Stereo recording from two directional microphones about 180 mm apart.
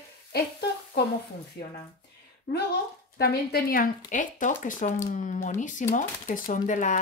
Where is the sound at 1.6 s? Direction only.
65° left (ahead or behind).